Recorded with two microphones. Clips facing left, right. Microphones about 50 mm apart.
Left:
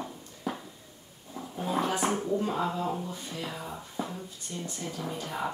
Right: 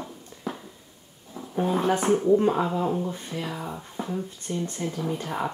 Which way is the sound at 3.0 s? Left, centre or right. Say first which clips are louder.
Right 6 dB; right.